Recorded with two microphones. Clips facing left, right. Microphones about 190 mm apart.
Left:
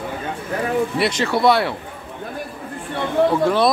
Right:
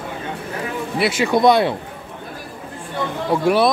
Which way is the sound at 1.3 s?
20° right (ahead or behind).